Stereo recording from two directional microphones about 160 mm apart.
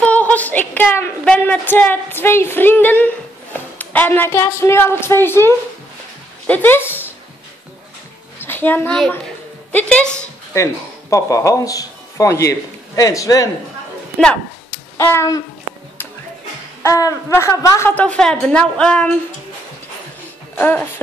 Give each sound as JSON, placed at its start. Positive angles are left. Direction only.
{"t": 0.0, "sound": "a woman's voice", "side_deg": 10}
{"t": 8.4, "sound": "a woman's voice", "side_deg": 10}
{"t": 10.5, "sound": "speech", "side_deg": 20}
{"t": 14.7, "sound": "a sound", "side_deg": 15}
{"t": 16.8, "sound": "a woman's voice", "side_deg": 20}
{"t": 20.5, "sound": "speech", "side_deg": 10}